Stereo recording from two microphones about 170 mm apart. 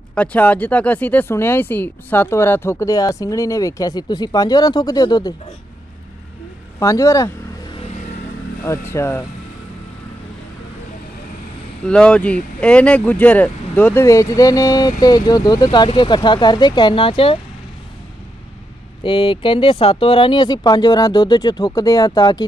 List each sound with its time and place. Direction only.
0.1 s speech: 10° left (ahead or behind); by 5.3 s 25° left (ahead or behind)
6.8 s speech: 20° left (ahead or behind)
8.6 s speech: 15° left (ahead or behind)
11.8 s speech: 5° left (ahead or behind); by 17.4 s 30° left (ahead or behind)
19.0 s speech: 30° left (ahead or behind)